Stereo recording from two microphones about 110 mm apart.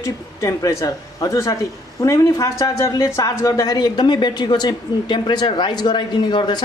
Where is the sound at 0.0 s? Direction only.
30° left (ahead or behind).